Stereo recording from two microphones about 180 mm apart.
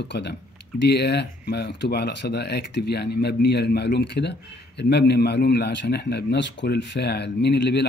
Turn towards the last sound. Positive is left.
turn(degrees=65)  # may be behind; listen again after turning